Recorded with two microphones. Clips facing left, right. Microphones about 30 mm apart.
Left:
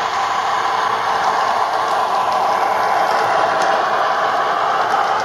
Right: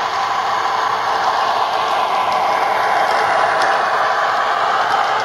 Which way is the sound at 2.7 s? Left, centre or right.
Right.